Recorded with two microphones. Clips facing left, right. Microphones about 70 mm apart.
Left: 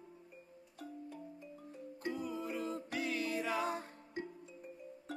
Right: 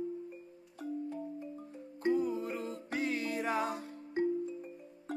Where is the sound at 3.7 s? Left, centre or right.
Left.